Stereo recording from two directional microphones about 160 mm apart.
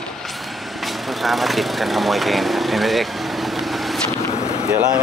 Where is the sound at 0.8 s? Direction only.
Centre (ahead or behind).